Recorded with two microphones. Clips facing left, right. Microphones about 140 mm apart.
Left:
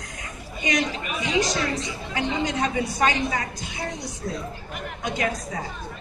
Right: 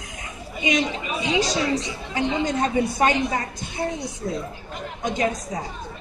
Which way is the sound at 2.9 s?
25° right (ahead or behind).